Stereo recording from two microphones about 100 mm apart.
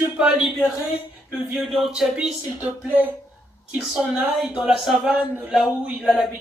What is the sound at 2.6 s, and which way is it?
Speech, 15° right (ahead or behind).